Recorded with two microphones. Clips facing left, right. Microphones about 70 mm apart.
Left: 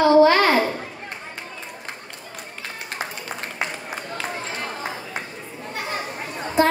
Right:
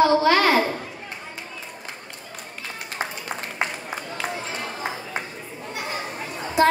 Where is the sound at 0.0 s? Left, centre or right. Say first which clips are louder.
Left 3 dB; left.